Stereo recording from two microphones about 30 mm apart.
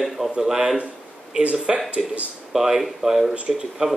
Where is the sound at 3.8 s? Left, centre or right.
Right.